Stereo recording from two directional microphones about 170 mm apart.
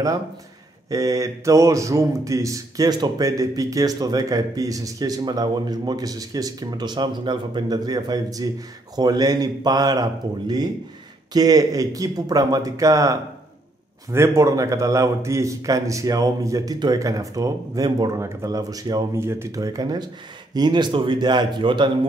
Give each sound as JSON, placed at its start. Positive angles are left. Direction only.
{"t": 0.8, "sound": "a man's voice", "side_deg": -20}